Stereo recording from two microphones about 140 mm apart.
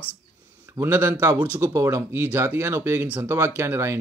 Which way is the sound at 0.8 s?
15° right (ahead or behind).